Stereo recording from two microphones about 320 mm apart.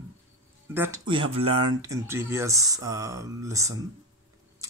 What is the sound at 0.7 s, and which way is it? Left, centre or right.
Speech, centre.